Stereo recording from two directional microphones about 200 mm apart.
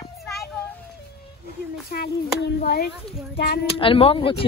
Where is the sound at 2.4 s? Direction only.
55° left (ahead or behind).